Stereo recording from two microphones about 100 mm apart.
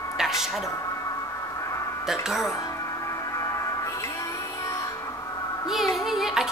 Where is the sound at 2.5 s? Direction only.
30° left (ahead or behind).